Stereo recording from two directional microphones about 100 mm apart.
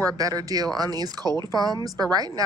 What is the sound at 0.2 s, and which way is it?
Speech, 35° right (ahead or behind).